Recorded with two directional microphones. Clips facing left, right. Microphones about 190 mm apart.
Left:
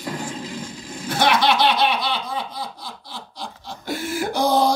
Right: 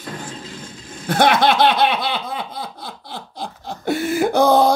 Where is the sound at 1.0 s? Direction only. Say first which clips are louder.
Right 4 dB; 60° right (ahead or behind).